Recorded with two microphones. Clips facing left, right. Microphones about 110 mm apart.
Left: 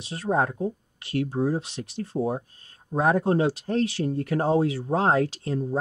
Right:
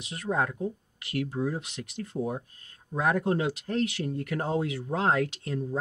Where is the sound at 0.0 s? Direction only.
30° left (ahead or behind).